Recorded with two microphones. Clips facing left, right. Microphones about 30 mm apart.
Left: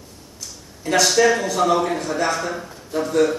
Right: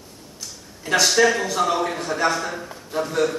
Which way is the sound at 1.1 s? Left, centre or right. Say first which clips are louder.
Left 1 dB; centre.